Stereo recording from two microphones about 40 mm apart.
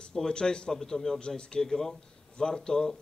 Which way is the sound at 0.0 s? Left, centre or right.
Centre.